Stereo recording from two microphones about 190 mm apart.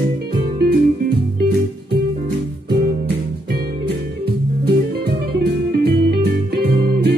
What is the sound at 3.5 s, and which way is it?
Music, 55° right (ahead or behind).